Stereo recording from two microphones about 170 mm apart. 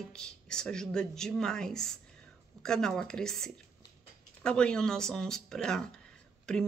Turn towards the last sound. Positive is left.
turn(degrees=5)  # may be behind; listen again after turning